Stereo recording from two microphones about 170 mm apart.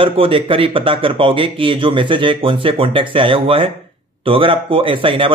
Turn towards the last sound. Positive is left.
turn(degrees=-30)  # may be behind; listen again after turning